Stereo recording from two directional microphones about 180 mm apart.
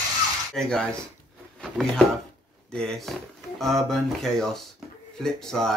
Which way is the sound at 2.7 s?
5° left (ahead or behind).